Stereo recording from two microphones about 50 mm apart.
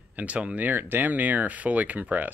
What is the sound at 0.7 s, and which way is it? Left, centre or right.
Speech, right.